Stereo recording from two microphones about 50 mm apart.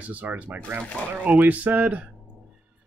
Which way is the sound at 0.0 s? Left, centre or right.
Right.